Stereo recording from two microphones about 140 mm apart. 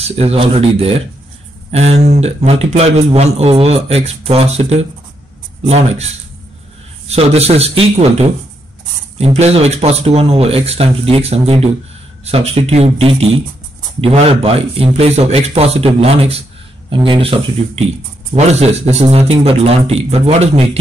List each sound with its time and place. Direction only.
0.0 s a man's voice: 45° right (ahead or behind)
7.1 s a man's voice: 50° right (ahead or behind)